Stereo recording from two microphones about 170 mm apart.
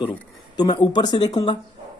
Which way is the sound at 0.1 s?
25° left (ahead or behind).